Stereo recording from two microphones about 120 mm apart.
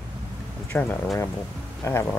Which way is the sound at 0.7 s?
15° left (ahead or behind).